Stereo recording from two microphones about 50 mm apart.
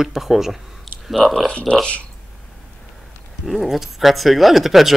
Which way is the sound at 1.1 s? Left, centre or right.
Centre.